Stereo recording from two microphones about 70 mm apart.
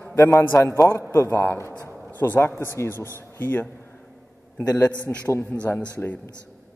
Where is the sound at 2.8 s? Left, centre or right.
Left.